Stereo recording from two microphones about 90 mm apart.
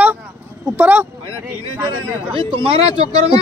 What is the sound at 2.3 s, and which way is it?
Speech, 90° right.